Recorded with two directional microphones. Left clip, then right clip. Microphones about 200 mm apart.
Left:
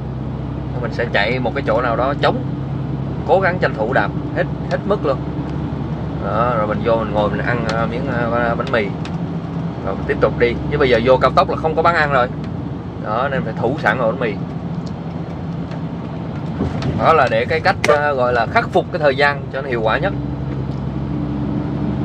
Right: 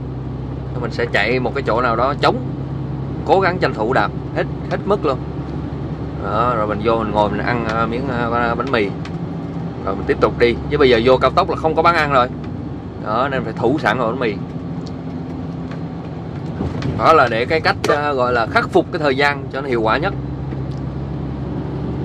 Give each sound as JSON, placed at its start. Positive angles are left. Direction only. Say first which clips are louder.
{"t": 0.9, "sound": "speech", "louder": "right 1 dB", "side_deg": -15}
{"t": 6.3, "sound": "speech", "louder": "even", "side_deg": -15}
{"t": 10.0, "sound": "speech", "louder": "right 1 dB", "side_deg": -20}
{"t": 17.0, "sound": "speech", "louder": "right 1 dB", "side_deg": -20}